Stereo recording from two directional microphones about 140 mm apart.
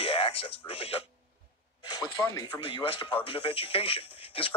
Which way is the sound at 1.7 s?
30° left (ahead or behind).